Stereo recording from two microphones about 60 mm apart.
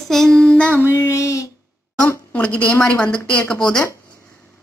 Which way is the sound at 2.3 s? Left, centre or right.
Centre.